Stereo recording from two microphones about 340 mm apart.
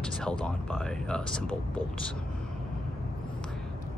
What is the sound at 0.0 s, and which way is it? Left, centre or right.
Speech, centre.